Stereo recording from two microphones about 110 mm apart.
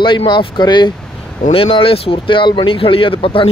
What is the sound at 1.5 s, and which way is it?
Speech, 55° left (ahead or behind).